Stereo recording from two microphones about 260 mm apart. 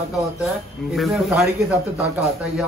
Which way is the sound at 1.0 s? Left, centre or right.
Centre.